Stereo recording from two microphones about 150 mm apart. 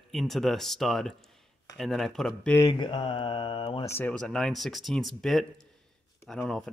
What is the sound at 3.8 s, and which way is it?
Speech, 15° left (ahead or behind).